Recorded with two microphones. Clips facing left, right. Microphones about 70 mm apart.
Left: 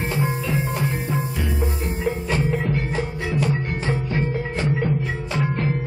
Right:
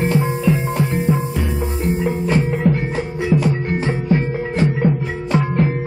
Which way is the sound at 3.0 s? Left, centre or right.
Centre.